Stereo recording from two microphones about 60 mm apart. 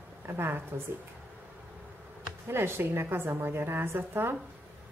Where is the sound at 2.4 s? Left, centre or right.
Right.